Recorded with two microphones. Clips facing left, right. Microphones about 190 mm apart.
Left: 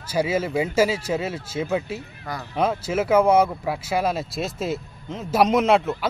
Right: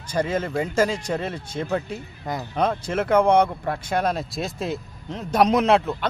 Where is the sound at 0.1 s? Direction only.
5° left (ahead or behind).